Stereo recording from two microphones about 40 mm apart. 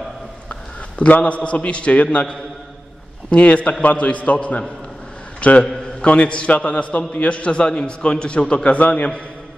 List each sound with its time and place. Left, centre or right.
0.5 s a sound: left
1.2 s a man's voice: left
3.3 s a man's voice: left
8.6 s a man's voice: left